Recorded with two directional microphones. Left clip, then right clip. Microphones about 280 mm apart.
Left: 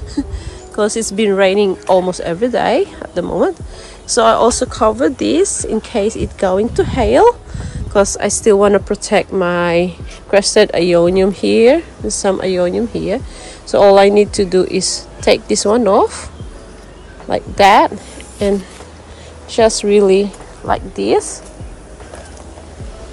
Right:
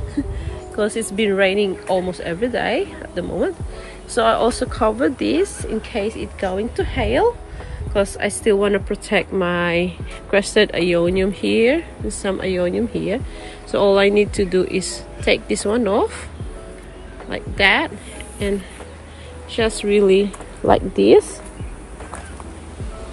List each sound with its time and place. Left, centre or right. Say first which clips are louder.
0.7 s a woman's voice: left 5 dB; centre
17.3 s a woman's voice: left 7 dB; centre
19.5 s a woman's voice: left 7 dB; centre
20.6 s speech: right 2 dB; centre
21.0 s a woman's voice: right 3 dB; left